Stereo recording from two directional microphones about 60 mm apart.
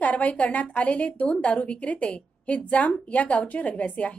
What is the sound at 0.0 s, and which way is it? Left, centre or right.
A woman's voice, left.